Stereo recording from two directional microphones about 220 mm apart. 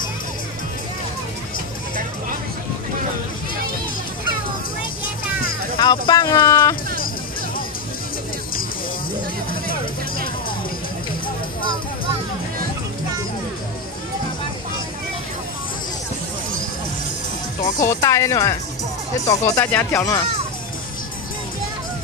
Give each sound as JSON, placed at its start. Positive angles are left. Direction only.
{"t": 5.8, "sound": "speech", "side_deg": 20}
{"t": 17.8, "sound": "speech", "side_deg": 15}